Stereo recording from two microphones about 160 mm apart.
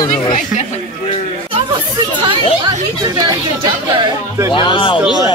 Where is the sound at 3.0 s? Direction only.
25° right (ahead or behind).